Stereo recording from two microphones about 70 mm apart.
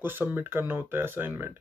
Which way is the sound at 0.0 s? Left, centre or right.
Right.